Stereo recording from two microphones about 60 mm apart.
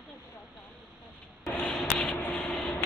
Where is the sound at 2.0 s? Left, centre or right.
Left.